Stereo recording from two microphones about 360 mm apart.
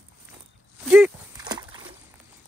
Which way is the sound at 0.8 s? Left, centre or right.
Centre.